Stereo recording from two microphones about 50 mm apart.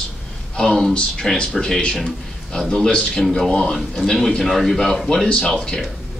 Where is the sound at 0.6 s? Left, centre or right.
Centre.